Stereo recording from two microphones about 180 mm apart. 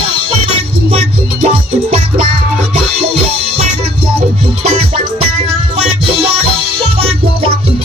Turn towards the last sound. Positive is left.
turn(degrees=-35)  # may be behind; listen again after turning